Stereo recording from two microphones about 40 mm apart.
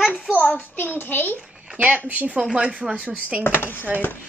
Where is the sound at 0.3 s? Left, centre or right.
Left.